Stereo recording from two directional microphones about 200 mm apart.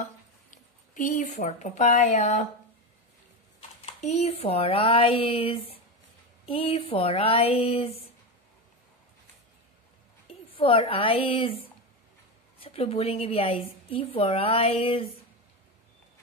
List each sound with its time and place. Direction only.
0.0 s speech: 40° left (ahead or behind)
3.8 s a woman's voice: 35° left (ahead or behind)
10.6 s a woman's voice: 30° left (ahead or behind)